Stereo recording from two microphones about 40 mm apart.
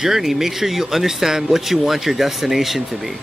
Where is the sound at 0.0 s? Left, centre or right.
Centre.